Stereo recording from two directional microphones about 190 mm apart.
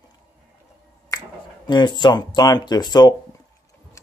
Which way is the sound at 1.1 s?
20° left (ahead or behind).